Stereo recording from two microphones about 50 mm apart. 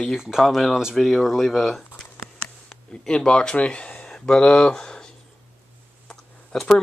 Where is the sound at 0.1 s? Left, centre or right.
Centre.